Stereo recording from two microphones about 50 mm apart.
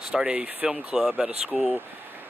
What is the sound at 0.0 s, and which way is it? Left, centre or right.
Speech, centre.